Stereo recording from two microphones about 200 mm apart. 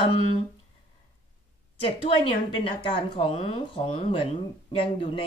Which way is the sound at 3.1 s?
25° left (ahead or behind).